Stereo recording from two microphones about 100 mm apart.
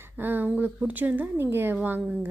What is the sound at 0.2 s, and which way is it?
A woman's voice, 20° right (ahead or behind).